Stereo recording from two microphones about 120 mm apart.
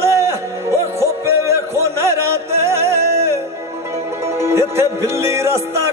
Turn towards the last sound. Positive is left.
turn(degrees=-25)  # may be behind; listen again after turning